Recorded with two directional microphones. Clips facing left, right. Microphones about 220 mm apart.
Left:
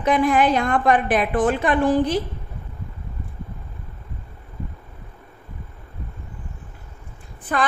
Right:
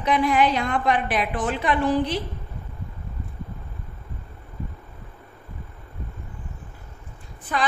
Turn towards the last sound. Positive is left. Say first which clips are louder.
# left 3 dB
turn(degrees=55)  # may be behind; listen again after turning